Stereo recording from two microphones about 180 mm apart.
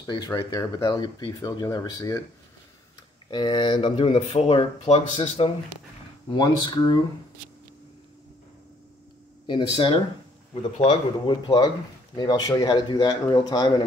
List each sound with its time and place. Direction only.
0.0 s speech: 20° left (ahead or behind)
3.3 s speech: 25° left (ahead or behind)
9.5 s speech: 30° left (ahead or behind)